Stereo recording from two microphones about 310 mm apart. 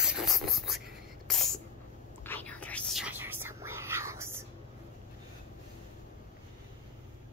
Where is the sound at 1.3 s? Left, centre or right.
Centre.